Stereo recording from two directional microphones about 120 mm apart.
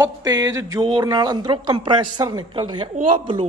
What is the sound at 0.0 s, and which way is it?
Speech, 30° right (ahead or behind).